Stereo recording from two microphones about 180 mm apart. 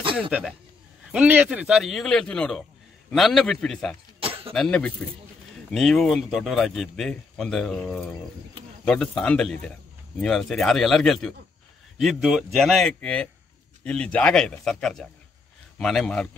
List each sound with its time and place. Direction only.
0.2 s speech: 5° right (ahead or behind)
4.2 s cough: 30° right (ahead or behind)
4.6 s speech: 5° left (ahead or behind)